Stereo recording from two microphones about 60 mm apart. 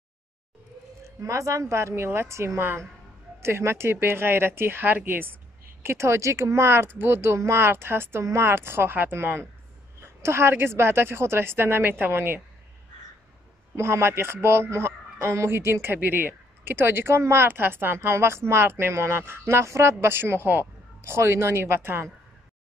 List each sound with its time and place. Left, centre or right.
1.0 s a man's voice: right
13.7 s a man's voice: right